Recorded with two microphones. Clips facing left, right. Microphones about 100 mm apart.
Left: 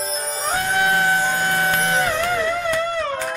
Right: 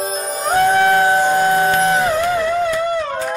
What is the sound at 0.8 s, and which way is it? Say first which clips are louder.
Civil defense siren: right 5 dB; 35° right (ahead or behind).